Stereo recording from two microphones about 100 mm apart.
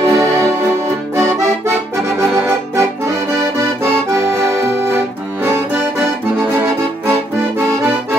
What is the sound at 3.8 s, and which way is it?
Accordion, 25° right (ahead or behind).